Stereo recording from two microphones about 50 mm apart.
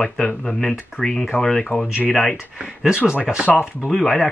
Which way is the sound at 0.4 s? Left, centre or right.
Centre.